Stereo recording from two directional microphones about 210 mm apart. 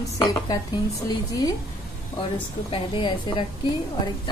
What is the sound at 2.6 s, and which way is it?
Speech, 25° left (ahead or behind).